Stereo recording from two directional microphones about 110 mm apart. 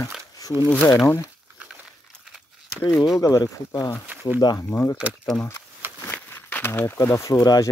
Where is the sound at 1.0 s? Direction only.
25° left (ahead or behind).